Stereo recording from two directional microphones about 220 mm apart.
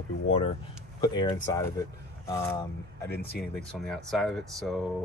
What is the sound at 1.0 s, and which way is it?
Speech, 20° left (ahead or behind).